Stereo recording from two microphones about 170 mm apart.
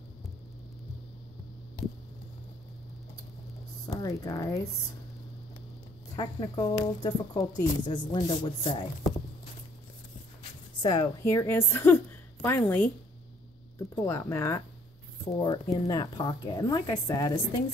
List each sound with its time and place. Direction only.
3.8 s speech: 20° left (ahead or behind)
6.1 s speech: 25° left (ahead or behind)
10.8 s a woman's voice: 25° left (ahead or behind)
11.2 s a woman's voice: 15° left (ahead or behind)
15.3 s speech: 25° left (ahead or behind)